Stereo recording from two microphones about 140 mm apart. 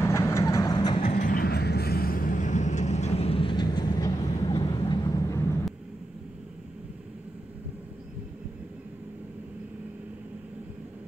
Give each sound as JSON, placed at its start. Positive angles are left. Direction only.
{"t": 0.0, "sound": "vehicle", "side_deg": 20}
{"t": 1.2, "sound": "vehicle", "side_deg": 90}